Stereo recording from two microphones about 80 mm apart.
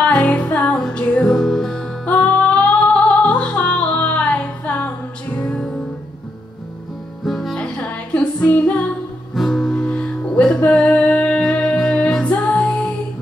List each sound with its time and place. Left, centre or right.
0.0 s music: centre
7.2 s music: centre
7.5 s music: centre
9.3 s music: centre